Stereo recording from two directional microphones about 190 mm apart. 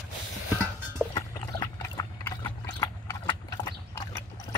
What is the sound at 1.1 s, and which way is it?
Horse, 20° left (ahead or behind).